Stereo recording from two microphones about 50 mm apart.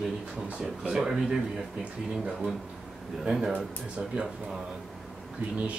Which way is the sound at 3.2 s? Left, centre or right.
Centre.